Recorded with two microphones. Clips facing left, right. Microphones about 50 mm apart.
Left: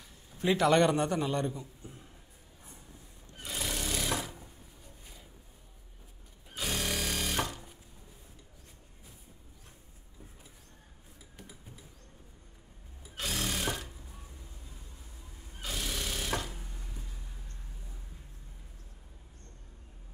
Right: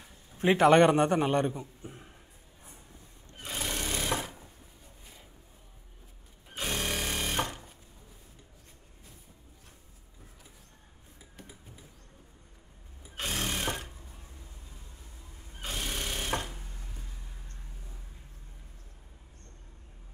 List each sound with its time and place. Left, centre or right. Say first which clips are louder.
0.0 s a man's voice: right 4 dB; right
3.3 s sewing machine: right 1 dB; right
6.5 s sewing machine: right 1 dB; right
13.0 s sewing machine: right 1 dB; right
14.3 s a sound: even; right
15.5 s sewing machine: right 1 dB; right
16.6 s a sound: left 1 dB; right